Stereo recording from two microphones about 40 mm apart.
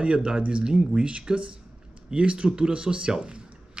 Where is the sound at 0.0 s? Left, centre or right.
Right.